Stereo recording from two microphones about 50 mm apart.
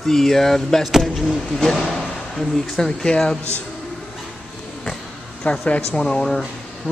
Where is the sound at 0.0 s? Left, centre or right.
Centre.